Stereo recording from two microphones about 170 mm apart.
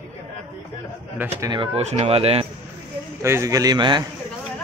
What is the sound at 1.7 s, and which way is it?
Speech, 40° right (ahead or behind).